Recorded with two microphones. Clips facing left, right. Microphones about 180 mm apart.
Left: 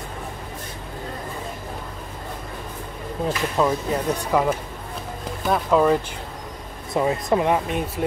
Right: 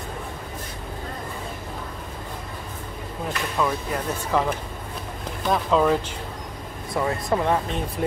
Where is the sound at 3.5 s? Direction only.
20° left (ahead or behind).